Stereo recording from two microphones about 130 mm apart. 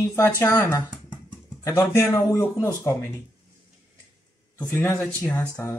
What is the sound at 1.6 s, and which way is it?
Speech, 25° left (ahead or behind).